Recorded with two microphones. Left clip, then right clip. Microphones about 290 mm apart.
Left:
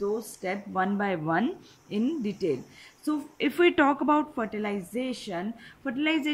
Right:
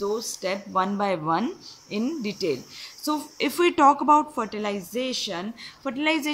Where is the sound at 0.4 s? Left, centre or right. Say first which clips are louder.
Right 6 dB; centre.